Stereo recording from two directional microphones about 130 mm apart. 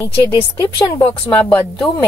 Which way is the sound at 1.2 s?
15° left (ahead or behind).